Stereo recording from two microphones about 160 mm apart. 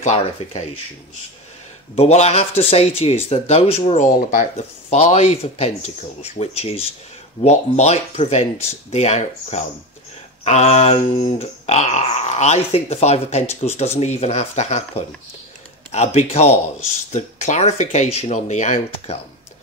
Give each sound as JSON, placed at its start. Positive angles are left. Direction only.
{"t": 0.0, "sound": "speech", "side_deg": 45}
{"t": 2.0, "sound": "speech", "side_deg": 40}